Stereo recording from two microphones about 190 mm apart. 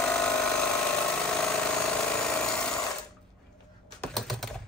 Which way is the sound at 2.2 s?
5° left (ahead or behind).